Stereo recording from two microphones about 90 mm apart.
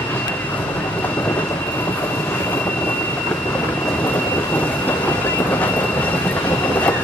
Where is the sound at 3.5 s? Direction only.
20° left (ahead or behind).